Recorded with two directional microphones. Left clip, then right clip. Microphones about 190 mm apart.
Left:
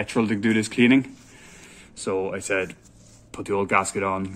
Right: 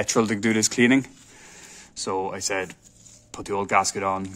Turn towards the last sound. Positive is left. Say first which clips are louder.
# even
turn(degrees=-20)  # may be behind; listen again after turning